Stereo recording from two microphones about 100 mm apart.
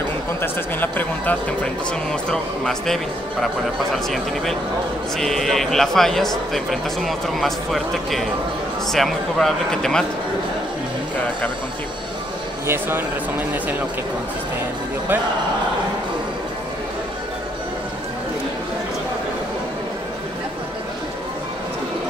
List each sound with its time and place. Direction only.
0.4 s speech: 20° left (ahead or behind)
2.2 s a man's voice: 5° left (ahead or behind)
5.1 s a man's voice: 5° left (ahead or behind)
12.6 s speech: 20° right (ahead or behind)